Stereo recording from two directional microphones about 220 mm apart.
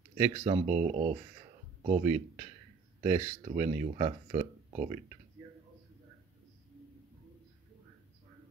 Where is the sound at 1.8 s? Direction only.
30° right (ahead or behind).